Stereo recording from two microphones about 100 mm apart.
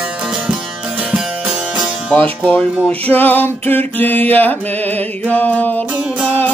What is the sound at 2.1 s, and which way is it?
Music, 15° left (ahead or behind).